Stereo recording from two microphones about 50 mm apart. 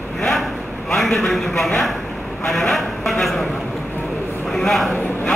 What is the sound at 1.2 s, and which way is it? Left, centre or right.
A man's voice, centre.